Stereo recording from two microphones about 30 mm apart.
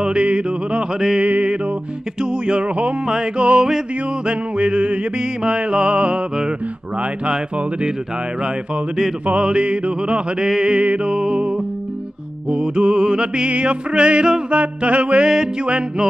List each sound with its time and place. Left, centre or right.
0.0 s music: right
0.9 s music: right
2.2 s music: right
9.4 s music: right
10.4 s music: right
13.5 s music: right
14.5 s music: right
15.2 s music: right